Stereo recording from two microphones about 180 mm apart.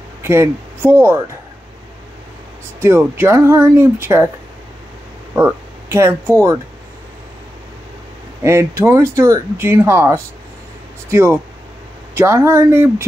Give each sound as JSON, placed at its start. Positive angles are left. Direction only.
{"t": 0.2, "sound": "speech", "side_deg": -15}
{"t": 2.8, "sound": "speech", "side_deg": -15}
{"t": 5.3, "sound": "speech", "side_deg": -10}
{"t": 8.4, "sound": "speech", "side_deg": -15}